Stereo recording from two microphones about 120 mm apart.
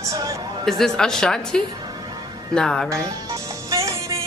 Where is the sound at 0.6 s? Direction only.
5° left (ahead or behind).